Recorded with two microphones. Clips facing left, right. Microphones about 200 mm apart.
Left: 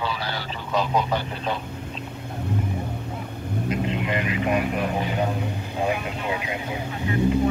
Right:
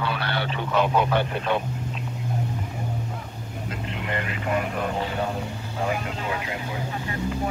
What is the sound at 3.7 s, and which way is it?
A man's voice, 20° left (ahead or behind).